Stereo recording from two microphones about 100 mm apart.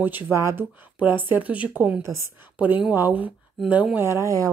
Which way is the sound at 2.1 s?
Centre (ahead or behind).